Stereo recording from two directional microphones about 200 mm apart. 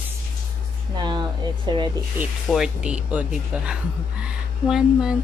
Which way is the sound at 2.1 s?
5° right (ahead or behind).